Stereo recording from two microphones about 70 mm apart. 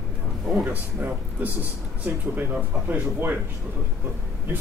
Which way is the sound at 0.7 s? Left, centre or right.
Right.